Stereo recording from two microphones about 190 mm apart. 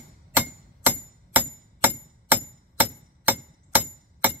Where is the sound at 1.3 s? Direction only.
10° right (ahead or behind).